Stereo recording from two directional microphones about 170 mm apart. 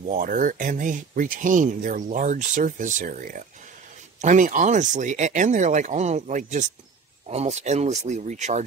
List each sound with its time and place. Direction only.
0.0 s speech: 50° right (ahead or behind)